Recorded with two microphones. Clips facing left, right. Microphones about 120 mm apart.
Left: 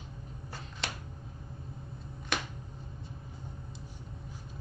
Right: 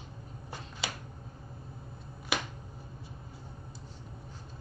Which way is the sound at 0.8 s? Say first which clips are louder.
Right 1 dB; centre (ahead or behind).